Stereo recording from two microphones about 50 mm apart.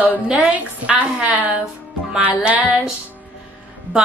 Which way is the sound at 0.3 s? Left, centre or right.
Centre.